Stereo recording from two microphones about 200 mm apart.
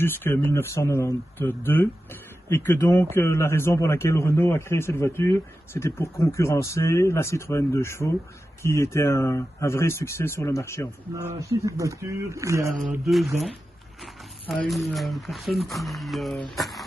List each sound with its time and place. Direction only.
0.0 s a man's voice: 10° left (ahead or behind)
11.1 s speech: 15° right (ahead or behind)
13.0 s speech: centre (ahead or behind)
14.5 s speech: centre (ahead or behind)